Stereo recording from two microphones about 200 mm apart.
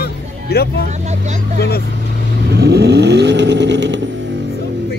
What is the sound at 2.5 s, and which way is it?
Vehicle, 55° right (ahead or behind).